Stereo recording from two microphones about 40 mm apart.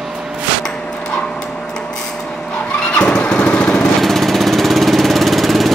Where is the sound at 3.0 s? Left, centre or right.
Left.